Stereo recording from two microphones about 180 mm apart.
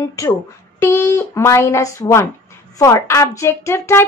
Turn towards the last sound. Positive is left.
turn(degrees=15)  # may be behind; listen again after turning